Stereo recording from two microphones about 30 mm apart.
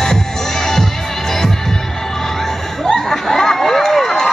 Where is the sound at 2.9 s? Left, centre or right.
Centre.